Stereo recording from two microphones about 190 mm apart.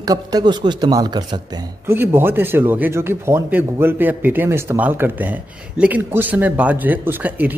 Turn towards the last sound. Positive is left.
turn(degrees=-10)  # may be behind; listen again after turning